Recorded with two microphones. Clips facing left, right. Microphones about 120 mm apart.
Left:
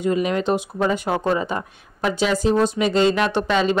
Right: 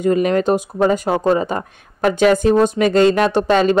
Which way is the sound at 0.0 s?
45° right (ahead or behind).